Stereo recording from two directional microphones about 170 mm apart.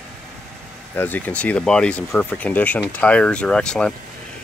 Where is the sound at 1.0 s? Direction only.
10° left (ahead or behind).